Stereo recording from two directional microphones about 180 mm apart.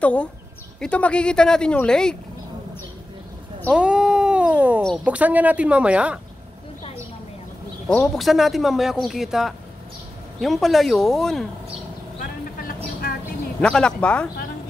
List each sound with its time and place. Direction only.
0.0 s speech: 5° left (ahead or behind)
3.7 s cat: 5° right (ahead or behind)
4.8 s speech: 5° right (ahead or behind)
7.9 s speech: 5° left (ahead or behind)
12.2 s vehicle: 50° left (ahead or behind)
13.6 s speech: 5° left (ahead or behind)